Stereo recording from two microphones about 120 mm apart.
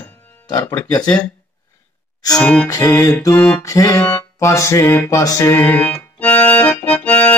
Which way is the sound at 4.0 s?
15° left (ahead or behind).